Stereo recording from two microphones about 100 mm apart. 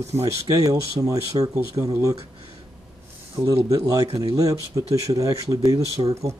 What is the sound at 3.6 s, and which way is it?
Speech, 35° right (ahead or behind).